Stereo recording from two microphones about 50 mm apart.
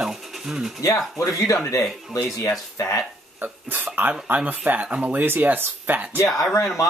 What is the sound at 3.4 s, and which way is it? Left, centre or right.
Speech, right.